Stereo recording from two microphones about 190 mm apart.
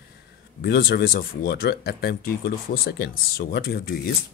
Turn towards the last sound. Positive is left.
turn(degrees=55)  # may be behind; listen again after turning